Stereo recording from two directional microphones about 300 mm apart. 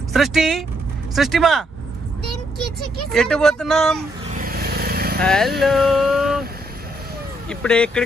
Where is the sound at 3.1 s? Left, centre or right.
Centre.